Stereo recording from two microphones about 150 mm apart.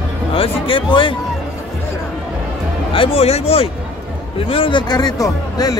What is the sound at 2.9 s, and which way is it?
Speech, 40° left (ahead or behind).